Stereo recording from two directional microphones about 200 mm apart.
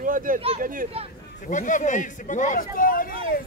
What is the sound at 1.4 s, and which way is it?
Speech, 40° left (ahead or behind).